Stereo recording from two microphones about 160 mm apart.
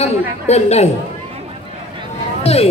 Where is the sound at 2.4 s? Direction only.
40° left (ahead or behind).